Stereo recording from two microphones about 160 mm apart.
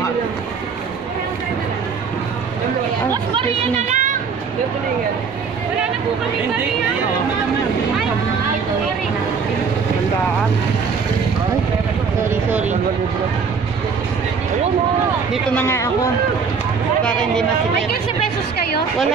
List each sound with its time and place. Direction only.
3.1 s chatter: 35° right (ahead or behind)
12.3 s a sound: 10° right (ahead or behind)
15.5 s speech: 15° left (ahead or behind)
17.0 s speech: 5° left (ahead or behind)